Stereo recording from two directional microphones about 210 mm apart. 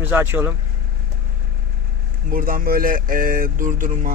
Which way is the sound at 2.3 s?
40° right (ahead or behind).